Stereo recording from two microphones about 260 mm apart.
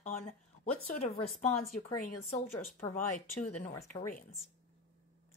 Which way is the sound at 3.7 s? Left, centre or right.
Centre.